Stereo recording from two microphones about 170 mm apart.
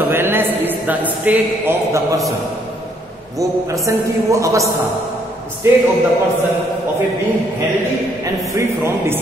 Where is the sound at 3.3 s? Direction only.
20° right (ahead or behind).